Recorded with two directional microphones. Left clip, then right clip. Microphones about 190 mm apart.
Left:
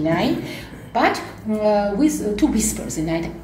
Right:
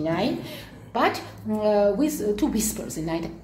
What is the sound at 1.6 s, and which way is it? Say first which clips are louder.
A woman's voice: left 3 dB; 40° right (ahead or behind).